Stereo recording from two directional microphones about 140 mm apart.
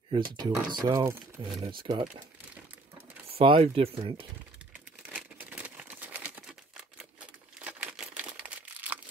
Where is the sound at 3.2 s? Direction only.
40° right (ahead or behind).